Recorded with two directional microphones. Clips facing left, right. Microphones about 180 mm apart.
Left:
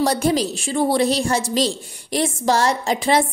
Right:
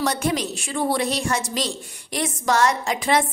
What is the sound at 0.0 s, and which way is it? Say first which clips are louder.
A woman's voice: left 5 dB; 35° left (ahead or behind).